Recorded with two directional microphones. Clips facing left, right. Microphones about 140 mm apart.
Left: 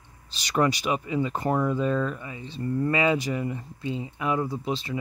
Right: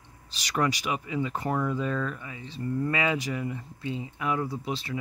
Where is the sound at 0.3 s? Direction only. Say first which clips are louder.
Left 4 dB; 30° left (ahead or behind).